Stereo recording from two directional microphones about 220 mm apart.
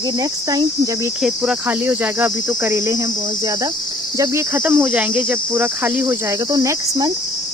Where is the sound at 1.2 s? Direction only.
Centre (ahead or behind).